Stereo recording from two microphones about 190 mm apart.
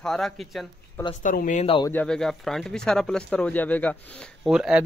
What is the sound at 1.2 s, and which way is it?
Speech, 40° left (ahead or behind).